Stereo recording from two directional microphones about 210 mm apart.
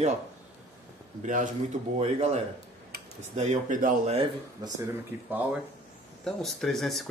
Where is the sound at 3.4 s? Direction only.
35° right (ahead or behind).